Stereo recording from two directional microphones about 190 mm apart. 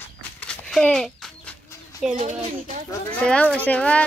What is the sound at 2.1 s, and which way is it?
Speech, 40° right (ahead or behind).